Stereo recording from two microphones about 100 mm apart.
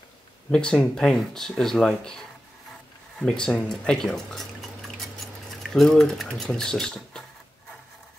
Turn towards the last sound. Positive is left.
turn(degrees=5)  # may be behind; listen again after turning